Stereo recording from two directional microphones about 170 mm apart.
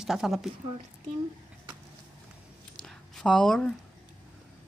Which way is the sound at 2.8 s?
5° left (ahead or behind).